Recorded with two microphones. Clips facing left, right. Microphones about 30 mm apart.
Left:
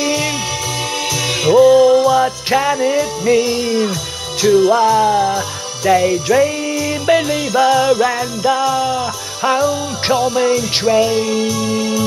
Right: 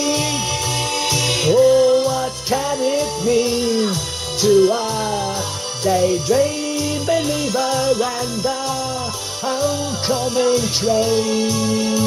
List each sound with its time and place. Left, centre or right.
0.0 s music: left
2.1 s music: left
5.0 s music: left
5.9 s music: left
6.3 s music: left
7.1 s jingle bell: left
10.0 s music: left
10.5 s jingle bell: left